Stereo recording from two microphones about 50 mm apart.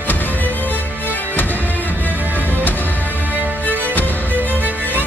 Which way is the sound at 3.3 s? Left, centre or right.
Right.